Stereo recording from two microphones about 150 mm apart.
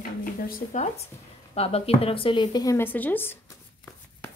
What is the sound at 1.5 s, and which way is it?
Speech, 40° left (ahead or behind).